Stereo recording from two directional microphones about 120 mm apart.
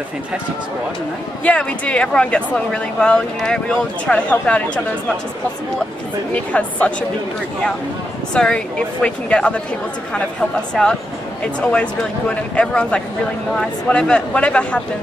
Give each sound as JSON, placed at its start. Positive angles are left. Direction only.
{"t": 1.4, "sound": "speech", "side_deg": 10}
{"t": 6.3, "sound": "speech", "side_deg": 10}
{"t": 8.4, "sound": "speech", "side_deg": 10}
{"t": 10.7, "sound": "speech", "side_deg": 5}